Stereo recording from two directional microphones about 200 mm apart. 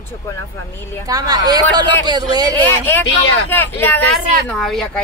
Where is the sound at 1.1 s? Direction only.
20° right (ahead or behind).